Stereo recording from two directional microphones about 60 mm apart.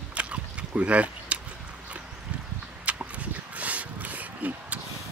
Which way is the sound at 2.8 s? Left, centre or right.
Right.